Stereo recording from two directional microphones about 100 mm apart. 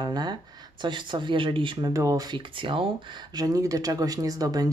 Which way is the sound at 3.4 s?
35° right (ahead or behind).